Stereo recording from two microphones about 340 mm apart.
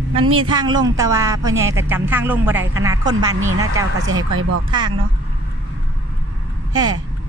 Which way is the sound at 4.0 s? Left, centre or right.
Right.